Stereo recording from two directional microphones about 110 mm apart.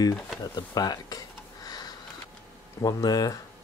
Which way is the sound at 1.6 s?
35° left (ahead or behind).